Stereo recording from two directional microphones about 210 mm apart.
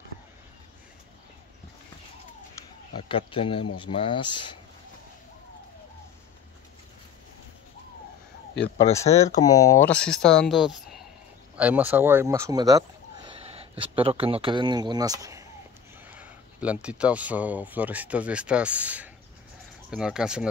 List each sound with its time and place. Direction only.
3.0 s speech: 25° left (ahead or behind)
8.9 s speech: 30° left (ahead or behind)
9.2 s speech: 15° left (ahead or behind); by 20.4 s 5° right (ahead or behind)